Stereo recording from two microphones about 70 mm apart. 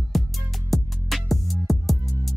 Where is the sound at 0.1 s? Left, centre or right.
Centre.